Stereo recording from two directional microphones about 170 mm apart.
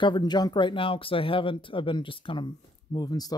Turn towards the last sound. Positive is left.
turn(degrees=20)  # may be behind; listen again after turning